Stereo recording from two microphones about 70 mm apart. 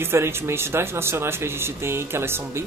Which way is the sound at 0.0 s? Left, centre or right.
Right.